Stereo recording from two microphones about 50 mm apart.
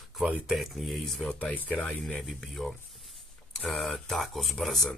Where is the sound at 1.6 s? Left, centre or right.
Left.